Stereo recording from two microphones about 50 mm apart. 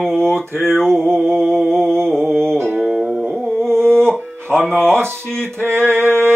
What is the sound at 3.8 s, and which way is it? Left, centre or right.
Music, centre.